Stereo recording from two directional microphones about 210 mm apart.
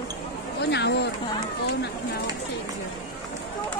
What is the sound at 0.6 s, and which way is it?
Speech, 55° left (ahead or behind).